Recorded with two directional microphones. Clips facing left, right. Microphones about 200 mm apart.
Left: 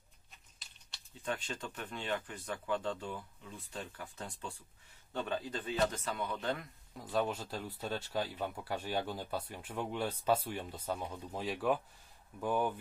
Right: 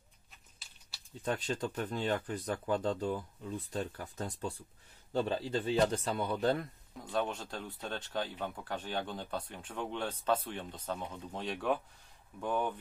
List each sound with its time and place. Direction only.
1.2 s speech: 40° right (ahead or behind)
7.0 s speech: centre (ahead or behind)